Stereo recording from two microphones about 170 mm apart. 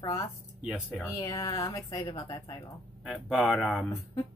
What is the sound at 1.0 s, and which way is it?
A woman's voice, 20° left (ahead or behind).